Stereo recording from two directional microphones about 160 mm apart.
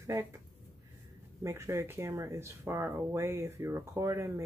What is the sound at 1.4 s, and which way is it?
Speech, 15° right (ahead or behind).